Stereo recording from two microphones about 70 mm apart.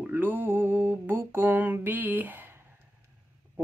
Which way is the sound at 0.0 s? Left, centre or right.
Right.